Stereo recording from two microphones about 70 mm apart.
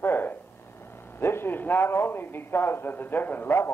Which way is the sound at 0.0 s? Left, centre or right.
Left.